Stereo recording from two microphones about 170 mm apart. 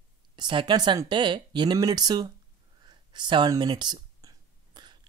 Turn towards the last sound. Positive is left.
turn(degrees=-25)  # may be behind; listen again after turning